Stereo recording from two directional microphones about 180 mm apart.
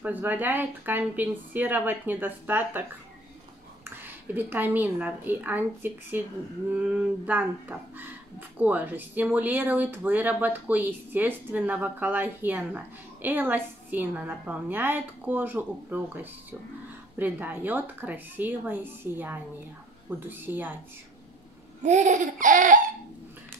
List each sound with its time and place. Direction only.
0.0 s speech: 10° right (ahead or behind)
3.8 s speech: 10° right (ahead or behind)
21.8 s laughter: 40° right (ahead or behind)